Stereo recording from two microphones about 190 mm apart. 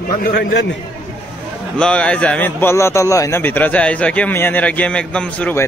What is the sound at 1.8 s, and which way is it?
A man's voice, 5° left (ahead or behind).